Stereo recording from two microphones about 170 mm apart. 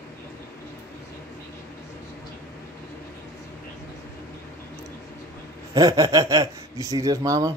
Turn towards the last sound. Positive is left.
turn(degrees=-20)  # may be behind; listen again after turning